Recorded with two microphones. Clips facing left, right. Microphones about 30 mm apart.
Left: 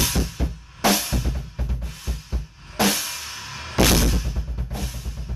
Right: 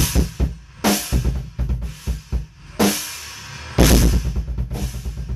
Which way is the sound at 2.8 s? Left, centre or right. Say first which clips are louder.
Right 2 dB; centre.